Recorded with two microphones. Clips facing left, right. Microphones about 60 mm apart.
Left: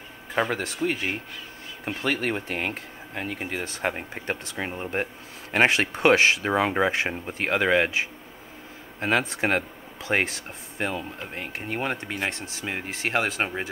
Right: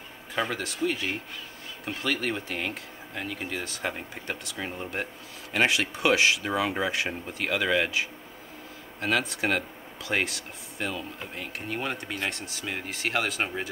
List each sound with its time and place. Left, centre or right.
0.3 s speech: left